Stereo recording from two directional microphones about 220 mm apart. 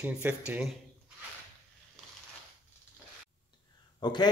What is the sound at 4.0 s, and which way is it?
Speech, 20° left (ahead or behind).